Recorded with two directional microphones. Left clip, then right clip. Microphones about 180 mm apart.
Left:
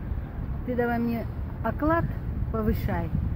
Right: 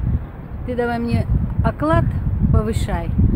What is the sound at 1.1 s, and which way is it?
Speech, 20° right (ahead or behind).